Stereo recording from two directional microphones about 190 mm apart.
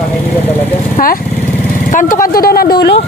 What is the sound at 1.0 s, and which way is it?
Speech, 45° left (ahead or behind).